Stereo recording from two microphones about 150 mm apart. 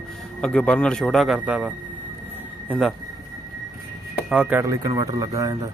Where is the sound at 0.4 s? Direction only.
5° left (ahead or behind); by 1.7 s 10° right (ahead or behind).